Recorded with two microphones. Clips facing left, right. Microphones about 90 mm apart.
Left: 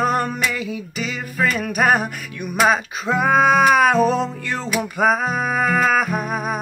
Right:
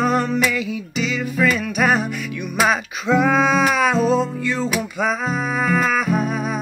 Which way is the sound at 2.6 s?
35° left (ahead or behind).